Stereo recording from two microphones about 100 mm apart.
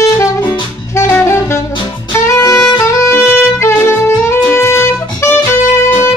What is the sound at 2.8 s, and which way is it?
Music, 25° left (ahead or behind).